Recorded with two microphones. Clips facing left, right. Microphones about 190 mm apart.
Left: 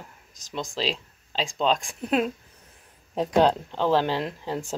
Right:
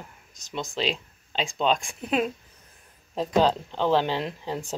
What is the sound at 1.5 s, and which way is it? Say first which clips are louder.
Speech: even; centre (ahead or behind).